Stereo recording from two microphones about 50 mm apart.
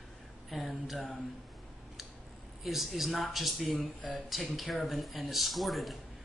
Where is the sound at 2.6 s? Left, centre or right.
Centre.